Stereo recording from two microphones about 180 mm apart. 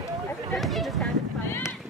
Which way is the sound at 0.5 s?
Centre (ahead or behind).